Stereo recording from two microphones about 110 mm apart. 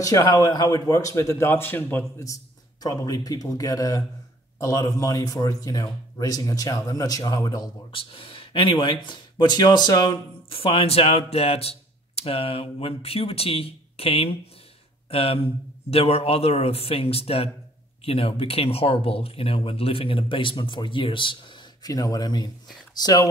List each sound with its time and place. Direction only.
0.0 s a man's voice: 35° left (ahead or behind)
7.9 s speech: 55° left (ahead or behind)
10.5 s speech: 55° left (ahead or behind); by 23.2 s 35° left (ahead or behind)